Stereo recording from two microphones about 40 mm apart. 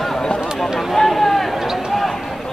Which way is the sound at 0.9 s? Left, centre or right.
Centre.